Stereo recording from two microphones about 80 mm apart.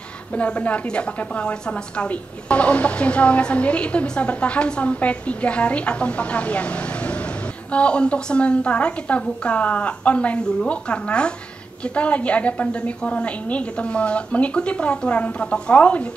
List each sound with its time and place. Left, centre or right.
0.4 s a woman's voice: centre